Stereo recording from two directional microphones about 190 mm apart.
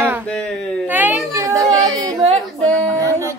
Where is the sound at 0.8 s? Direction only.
10° right (ahead or behind).